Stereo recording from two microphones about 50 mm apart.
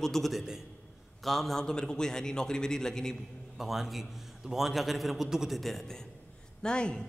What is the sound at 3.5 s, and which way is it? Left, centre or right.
A man's voice, centre.